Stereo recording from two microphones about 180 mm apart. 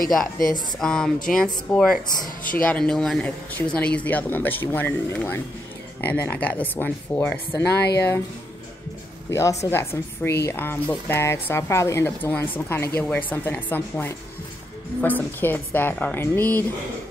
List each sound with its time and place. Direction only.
0.7 s speech: 5° left (ahead or behind)
2.2 s a woman's voice: 50° left (ahead or behind)
2.6 s speech: 5° left (ahead or behind)
7.8 s speech: 65° left (ahead or behind)
9.3 s speech: 15° left (ahead or behind)